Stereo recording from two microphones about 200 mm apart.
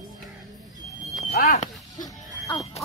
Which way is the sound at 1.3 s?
45° left (ahead or behind).